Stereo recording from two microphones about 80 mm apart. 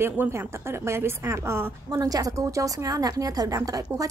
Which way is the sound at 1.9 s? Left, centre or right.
Right.